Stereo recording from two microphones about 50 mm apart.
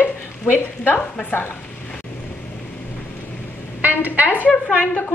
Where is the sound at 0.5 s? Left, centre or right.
Left.